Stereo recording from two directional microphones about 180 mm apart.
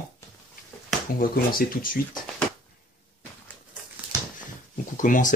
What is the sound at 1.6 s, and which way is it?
Speech, 55° left (ahead or behind).